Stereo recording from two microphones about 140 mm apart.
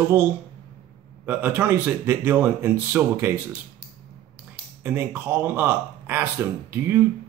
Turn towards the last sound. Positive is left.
turn(degrees=-15)  # may be behind; listen again after turning